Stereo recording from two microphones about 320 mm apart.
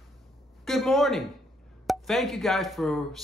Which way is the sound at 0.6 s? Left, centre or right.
Centre.